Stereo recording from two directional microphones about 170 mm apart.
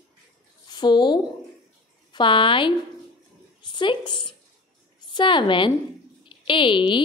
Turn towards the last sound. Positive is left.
turn(degrees=30)  # may be behind; listen again after turning